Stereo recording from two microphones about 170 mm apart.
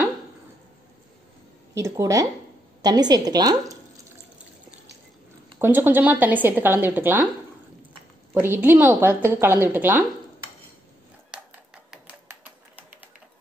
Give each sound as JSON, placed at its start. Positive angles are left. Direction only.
{"t": 1.7, "sound": "a woman's voice", "side_deg": -20}
{"t": 5.6, "sound": "a woman's voice", "side_deg": -10}
{"t": 8.4, "sound": "a woman's voice", "side_deg": -10}
{"t": 11.3, "sound": "a sound", "side_deg": -5}